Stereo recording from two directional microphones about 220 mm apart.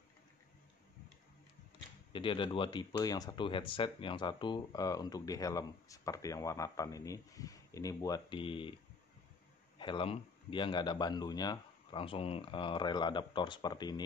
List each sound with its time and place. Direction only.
2.1 s speech: 20° left (ahead or behind)
9.8 s speech: 20° left (ahead or behind)